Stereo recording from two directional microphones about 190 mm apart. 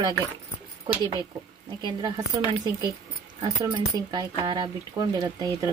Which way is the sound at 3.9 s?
20° right (ahead or behind).